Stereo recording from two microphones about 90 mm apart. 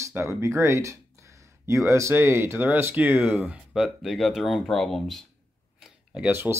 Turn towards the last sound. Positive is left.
turn(degrees=-20)  # may be behind; listen again after turning